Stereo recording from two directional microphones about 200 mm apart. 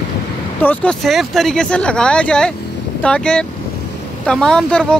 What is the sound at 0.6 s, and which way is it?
Speech, 5° left (ahead or behind).